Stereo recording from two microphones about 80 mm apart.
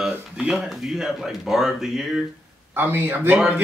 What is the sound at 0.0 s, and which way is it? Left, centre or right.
Speech, centre.